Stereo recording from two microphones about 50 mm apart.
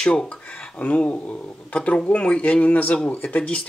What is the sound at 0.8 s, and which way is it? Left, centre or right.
Speech, left.